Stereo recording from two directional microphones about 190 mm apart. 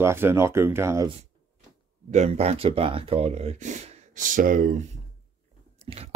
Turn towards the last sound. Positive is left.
turn(degrees=-30)  # may be behind; listen again after turning